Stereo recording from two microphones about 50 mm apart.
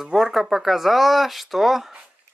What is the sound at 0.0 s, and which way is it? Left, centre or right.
Speech, centre.